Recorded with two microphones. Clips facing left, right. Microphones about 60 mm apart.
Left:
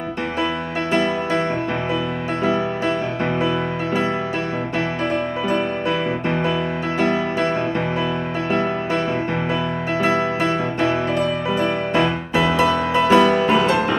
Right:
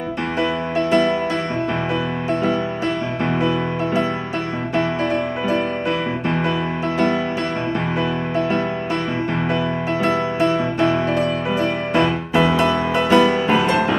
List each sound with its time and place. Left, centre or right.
13.0 s music: centre
13.4 s music: centre